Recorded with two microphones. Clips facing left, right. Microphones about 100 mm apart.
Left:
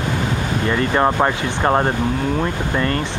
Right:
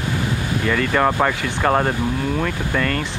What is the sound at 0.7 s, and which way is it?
Speech, 20° left (ahead or behind).